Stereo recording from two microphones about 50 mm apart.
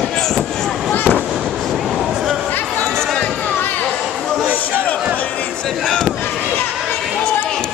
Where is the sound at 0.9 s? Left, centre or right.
Left.